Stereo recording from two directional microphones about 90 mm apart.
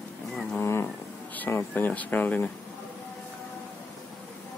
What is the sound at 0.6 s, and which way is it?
Wild animals, 30° left (ahead or behind).